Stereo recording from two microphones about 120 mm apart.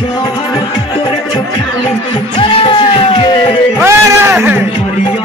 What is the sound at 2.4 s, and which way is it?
Music, 40° left (ahead or behind).